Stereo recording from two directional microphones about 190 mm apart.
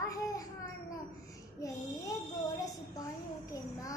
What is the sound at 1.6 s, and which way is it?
Speech, 15° left (ahead or behind).